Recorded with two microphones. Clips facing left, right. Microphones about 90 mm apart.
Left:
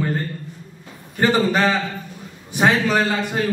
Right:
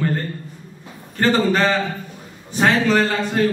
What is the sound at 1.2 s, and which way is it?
A man's voice, 15° left (ahead or behind).